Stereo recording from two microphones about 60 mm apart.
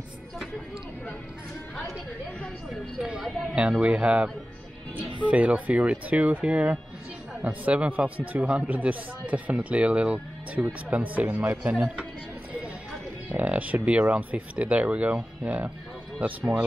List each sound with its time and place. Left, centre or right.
3.8 s speech: right
13.4 s speech: right